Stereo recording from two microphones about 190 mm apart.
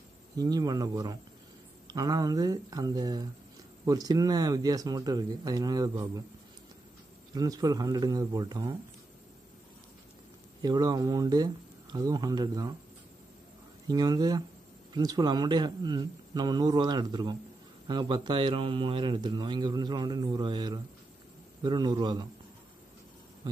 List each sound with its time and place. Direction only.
0.4 s a man's voice: 20° right (ahead or behind)
7.3 s a man's voice: 20° right (ahead or behind)
10.6 s a man's voice: 20° right (ahead or behind)
13.8 s a man's voice: 20° right (ahead or behind)